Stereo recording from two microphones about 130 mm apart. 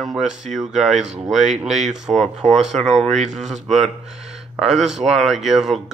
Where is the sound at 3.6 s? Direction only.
Centre (ahead or behind).